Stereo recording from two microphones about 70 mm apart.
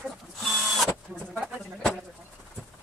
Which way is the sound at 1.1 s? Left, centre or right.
Centre.